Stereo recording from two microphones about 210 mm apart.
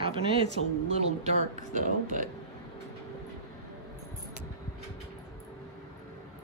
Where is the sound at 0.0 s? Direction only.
25° right (ahead or behind).